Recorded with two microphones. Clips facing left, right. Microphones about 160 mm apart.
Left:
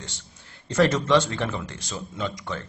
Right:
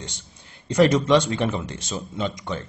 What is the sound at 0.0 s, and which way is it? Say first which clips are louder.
Speech: right 3 dB; 20° right (ahead or behind).